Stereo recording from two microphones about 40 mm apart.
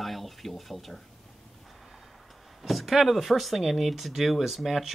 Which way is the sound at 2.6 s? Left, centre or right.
Centre.